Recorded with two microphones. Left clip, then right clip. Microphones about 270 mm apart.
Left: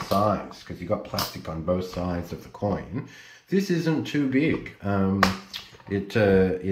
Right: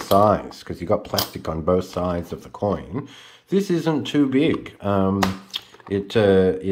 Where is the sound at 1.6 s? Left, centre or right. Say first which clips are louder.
Right 6 dB; centre.